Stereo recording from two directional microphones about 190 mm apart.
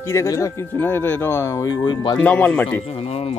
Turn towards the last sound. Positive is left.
turn(degrees=30)  # may be behind; listen again after turning